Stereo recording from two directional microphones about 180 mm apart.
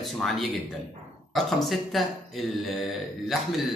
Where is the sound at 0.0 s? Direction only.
Centre (ahead or behind).